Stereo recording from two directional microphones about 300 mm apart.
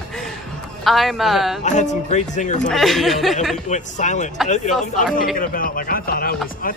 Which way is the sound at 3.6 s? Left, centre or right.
Left.